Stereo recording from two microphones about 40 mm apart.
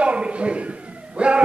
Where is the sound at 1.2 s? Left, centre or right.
Right.